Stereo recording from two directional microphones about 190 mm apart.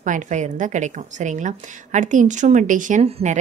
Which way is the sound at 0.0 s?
40° right (ahead or behind).